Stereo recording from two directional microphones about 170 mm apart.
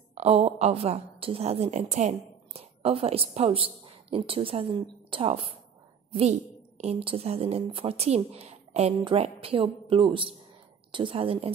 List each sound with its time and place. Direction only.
0.1 s a woman's voice: 40° right (ahead or behind)
6.8 s speech: 35° right (ahead or behind)